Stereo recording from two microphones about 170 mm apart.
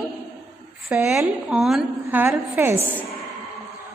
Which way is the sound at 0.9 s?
5° right (ahead or behind).